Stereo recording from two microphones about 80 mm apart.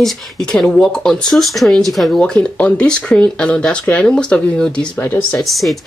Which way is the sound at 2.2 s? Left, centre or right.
Centre.